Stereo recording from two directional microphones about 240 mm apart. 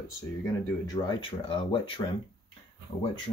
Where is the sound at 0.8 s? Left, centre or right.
Centre.